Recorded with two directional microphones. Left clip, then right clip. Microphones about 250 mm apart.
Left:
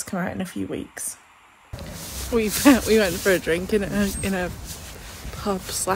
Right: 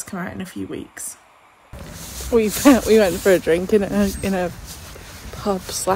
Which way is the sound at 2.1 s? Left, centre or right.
Centre.